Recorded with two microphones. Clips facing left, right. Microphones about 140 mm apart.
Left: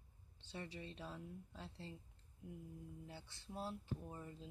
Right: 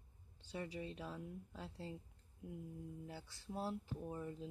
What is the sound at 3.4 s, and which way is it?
Speech, 15° right (ahead or behind).